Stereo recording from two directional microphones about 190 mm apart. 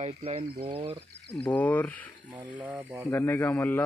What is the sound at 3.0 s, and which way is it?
Speech, 10° left (ahead or behind).